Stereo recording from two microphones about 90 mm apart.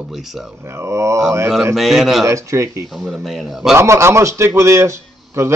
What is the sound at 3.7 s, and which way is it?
A man's voice, 30° right (ahead or behind).